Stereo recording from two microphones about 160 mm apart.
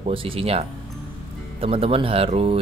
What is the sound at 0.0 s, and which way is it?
Speech, 35° right (ahead or behind).